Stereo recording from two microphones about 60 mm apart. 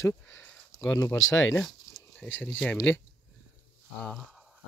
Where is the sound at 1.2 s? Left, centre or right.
Left.